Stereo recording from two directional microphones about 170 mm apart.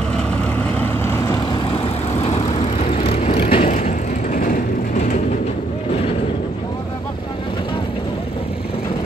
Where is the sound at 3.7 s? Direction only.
50° left (ahead or behind).